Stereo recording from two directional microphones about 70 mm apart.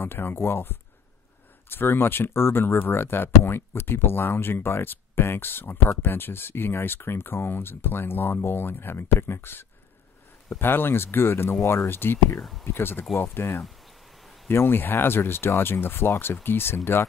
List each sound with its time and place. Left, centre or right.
0.0 s speech: left
12.4 s speech: centre
12.6 s speech: left
14.2 s a sound: centre
14.5 s speech: left